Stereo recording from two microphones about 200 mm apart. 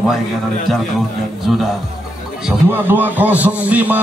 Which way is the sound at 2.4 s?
10° right (ahead or behind).